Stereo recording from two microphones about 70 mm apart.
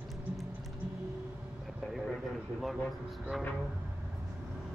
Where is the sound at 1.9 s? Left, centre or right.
Centre.